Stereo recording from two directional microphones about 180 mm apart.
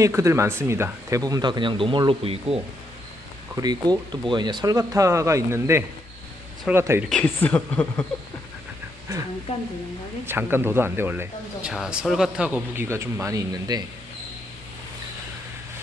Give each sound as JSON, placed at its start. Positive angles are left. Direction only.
{"t": 0.0, "sound": "speech", "side_deg": -15}
{"t": 3.5, "sound": "speech", "side_deg": -20}
{"t": 7.1, "sound": "speech", "side_deg": 10}
{"t": 10.2, "sound": "speech", "side_deg": -10}